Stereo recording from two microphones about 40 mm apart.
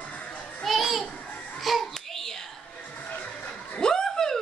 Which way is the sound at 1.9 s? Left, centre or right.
Centre.